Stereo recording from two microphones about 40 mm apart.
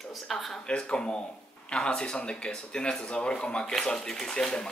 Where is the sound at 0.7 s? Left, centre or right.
Left.